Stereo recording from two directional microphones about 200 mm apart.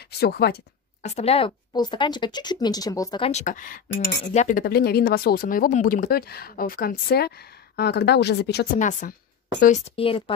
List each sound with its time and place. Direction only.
0.2 s speech: 50° left (ahead or behind)
1.0 s speech: 30° left (ahead or behind)
3.3 s speech: 35° left (ahead or behind)
4.2 s speech: 35° left (ahead or behind); by 8.6 s 55° left (ahead or behind)
8.7 s a woman's voice: 40° left (ahead or behind)
9.9 s speech: 25° left (ahead or behind)